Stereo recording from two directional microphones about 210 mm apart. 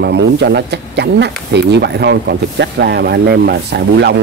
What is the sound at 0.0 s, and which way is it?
Speech, 55° right (ahead or behind).